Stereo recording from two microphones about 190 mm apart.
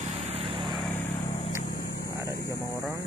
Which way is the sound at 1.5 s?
50° left (ahead or behind).